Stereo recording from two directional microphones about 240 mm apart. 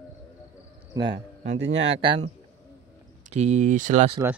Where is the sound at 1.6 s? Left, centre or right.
Right.